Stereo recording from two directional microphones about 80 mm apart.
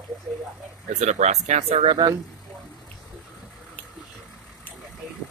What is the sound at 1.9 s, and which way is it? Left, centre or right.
Speech, right.